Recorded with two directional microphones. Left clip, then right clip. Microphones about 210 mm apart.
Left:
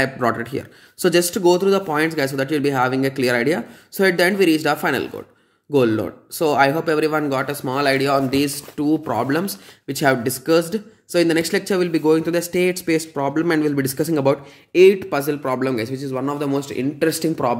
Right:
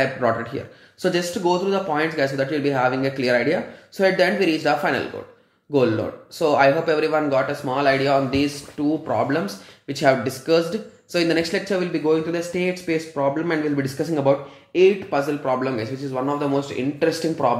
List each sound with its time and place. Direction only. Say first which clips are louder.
0.0 s speech: left 1 dB; 45° left (ahead or behind)